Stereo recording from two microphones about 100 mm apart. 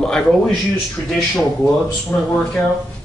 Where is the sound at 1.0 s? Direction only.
25° left (ahead or behind).